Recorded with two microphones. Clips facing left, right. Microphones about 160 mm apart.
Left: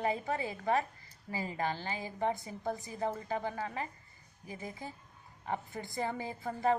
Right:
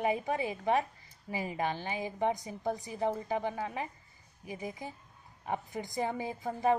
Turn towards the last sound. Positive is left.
turn(degrees=-15)  # may be behind; listen again after turning